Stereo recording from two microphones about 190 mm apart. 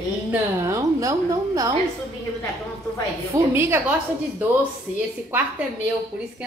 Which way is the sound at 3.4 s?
10° right (ahead or behind).